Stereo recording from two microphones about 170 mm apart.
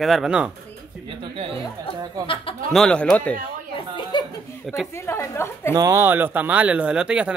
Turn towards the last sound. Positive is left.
turn(degrees=-5)  # may be behind; listen again after turning